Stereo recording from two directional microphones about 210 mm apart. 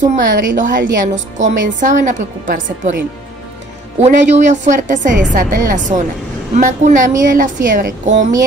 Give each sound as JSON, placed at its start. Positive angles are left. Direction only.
{"t": 0.0, "sound": "a woman's voice", "side_deg": -40}
{"t": 4.0, "sound": "a woman's voice", "side_deg": -35}